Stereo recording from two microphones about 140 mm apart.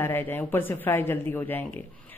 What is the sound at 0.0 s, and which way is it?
Speech, 15° left (ahead or behind).